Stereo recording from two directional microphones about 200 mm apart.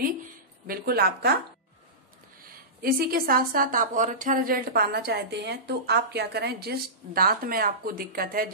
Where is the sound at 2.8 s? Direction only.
45° right (ahead or behind).